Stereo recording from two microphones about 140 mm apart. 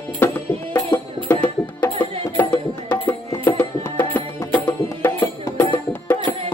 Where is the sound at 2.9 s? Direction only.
25° left (ahead or behind).